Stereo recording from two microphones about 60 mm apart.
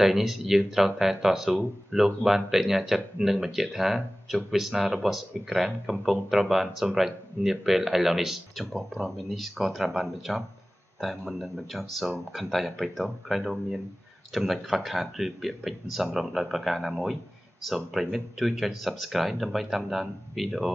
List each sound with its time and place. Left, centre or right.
0.0 s speech: centre